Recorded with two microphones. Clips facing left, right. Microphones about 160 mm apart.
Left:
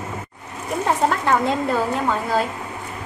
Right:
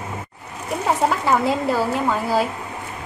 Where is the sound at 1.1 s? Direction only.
5° right (ahead or behind).